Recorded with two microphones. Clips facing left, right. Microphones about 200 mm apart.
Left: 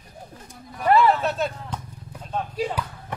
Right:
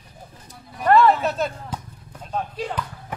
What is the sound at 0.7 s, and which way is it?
Speech, 5° left (ahead or behind).